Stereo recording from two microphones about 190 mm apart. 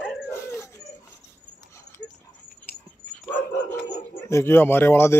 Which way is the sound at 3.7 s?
15° left (ahead or behind).